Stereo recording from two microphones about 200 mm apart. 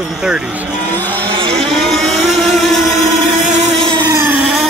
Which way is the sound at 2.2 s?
Centre (ahead or behind).